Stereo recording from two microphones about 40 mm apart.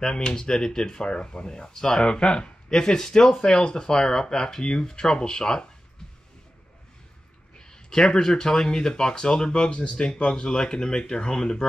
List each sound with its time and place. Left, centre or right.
0.0 s speech: centre
2.0 s speech: left
7.5 s speech: centre